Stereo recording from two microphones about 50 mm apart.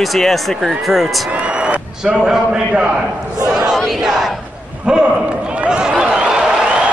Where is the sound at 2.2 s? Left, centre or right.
Centre.